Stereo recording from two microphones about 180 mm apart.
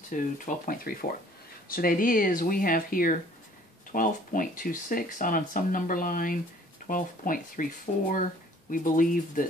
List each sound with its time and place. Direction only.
0.1 s speech: 45° left (ahead or behind)